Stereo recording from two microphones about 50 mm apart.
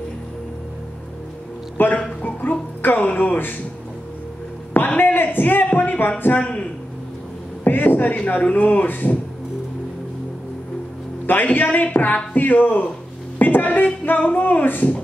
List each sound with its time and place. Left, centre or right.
1.8 s speech: left
3.0 s speech: left
4.7 s a woman's voice: left
6.4 s speech: left
7.6 s a sound: left
8.3 s a woman's voice: left
11.2 s a woman's voice: left